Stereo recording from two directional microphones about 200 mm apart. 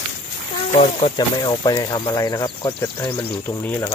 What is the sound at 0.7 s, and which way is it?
Speech, 30° left (ahead or behind).